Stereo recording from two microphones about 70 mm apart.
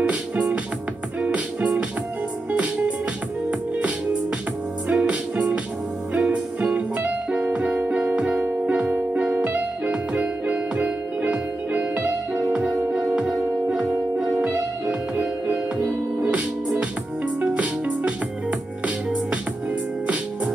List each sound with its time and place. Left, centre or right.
0.1 s music: right
3.4 s music: centre
5.0 s music: centre
12.6 s music: centre; by 18.1 s right